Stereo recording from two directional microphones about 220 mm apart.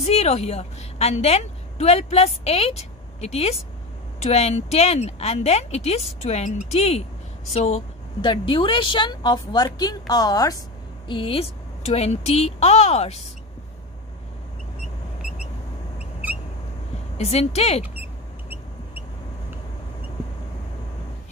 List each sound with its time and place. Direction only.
0.0 s a woman's voice: 30° left (ahead or behind)
17.2 s speech: 30° left (ahead or behind)